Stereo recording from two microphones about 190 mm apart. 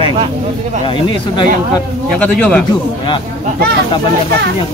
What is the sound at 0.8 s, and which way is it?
Speech, 25° left (ahead or behind).